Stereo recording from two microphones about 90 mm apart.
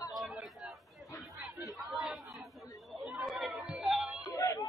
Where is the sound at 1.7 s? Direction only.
Centre (ahead or behind).